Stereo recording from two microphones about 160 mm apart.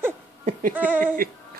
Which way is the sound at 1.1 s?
65° right (ahead or behind).